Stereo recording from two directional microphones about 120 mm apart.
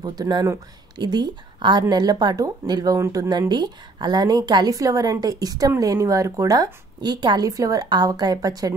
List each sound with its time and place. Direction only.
0.0 s speech: 35° right (ahead or behind)